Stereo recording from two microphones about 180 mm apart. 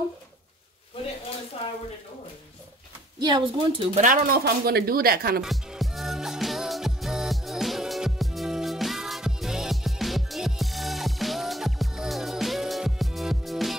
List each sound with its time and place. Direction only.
3.2 s speech: 25° right (ahead or behind)
4.0 s speech: 50° right (ahead or behind)
5.4 s music: centre (ahead or behind)